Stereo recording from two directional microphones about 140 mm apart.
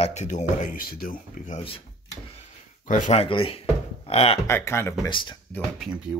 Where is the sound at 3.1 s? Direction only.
40° left (ahead or behind).